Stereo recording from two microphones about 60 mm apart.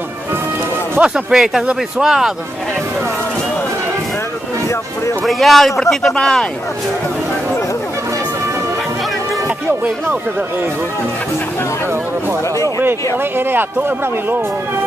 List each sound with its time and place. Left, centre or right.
1.0 s speech: centre
5.2 s speech: centre
13.4 s speech: right